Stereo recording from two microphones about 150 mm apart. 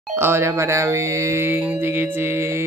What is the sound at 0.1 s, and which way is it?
Mantra, 15° right (ahead or behind).